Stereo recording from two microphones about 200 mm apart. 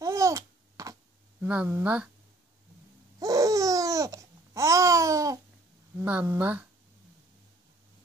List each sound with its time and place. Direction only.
0.0 s babbling: 15° right (ahead or behind)
1.4 s speech: 5° right (ahead or behind)
3.2 s babbling: 15° right (ahead or behind)
5.9 s speech: 10° right (ahead or behind)